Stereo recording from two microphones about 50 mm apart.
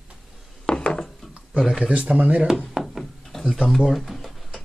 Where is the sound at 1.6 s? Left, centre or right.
Centre.